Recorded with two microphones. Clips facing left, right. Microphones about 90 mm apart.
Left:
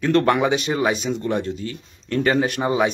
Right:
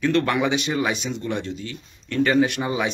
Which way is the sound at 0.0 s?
35° left (ahead or behind).